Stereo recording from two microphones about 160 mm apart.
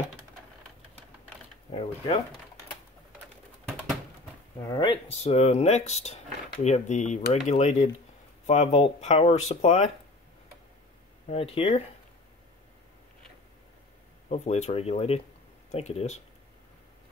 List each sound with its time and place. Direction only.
1.7 s speech: 35° left (ahead or behind)
4.6 s speech: 25° left (ahead or behind)
5.0 s speech: 40° left (ahead or behind)
11.2 s speech: 40° left (ahead or behind)
14.3 s speech: 40° left (ahead or behind)